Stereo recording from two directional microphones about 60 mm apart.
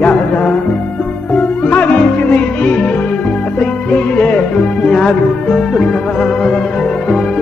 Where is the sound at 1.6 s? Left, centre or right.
Left.